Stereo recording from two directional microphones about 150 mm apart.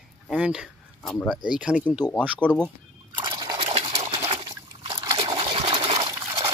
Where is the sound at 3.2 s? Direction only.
30° right (ahead or behind).